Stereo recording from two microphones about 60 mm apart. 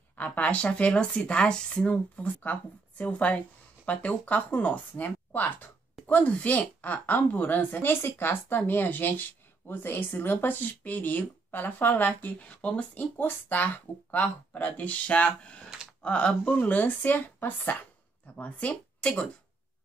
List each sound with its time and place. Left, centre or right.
0.1 s speech: left